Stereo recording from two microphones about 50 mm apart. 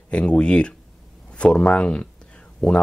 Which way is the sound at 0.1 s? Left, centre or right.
Left.